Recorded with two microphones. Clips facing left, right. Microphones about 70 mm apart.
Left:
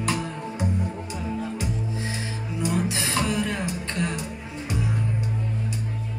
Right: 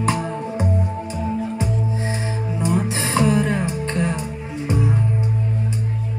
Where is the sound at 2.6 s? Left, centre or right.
Right.